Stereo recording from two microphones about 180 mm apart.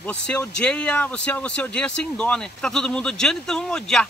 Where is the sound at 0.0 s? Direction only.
5° left (ahead or behind).